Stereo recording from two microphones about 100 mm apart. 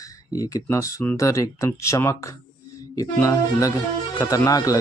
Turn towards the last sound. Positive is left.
turn(degrees=35)  # may be behind; listen again after turning